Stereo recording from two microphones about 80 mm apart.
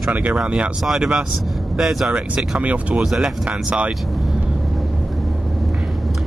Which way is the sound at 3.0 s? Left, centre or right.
Centre.